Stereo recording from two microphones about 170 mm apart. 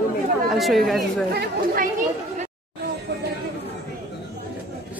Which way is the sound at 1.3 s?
55° right (ahead or behind).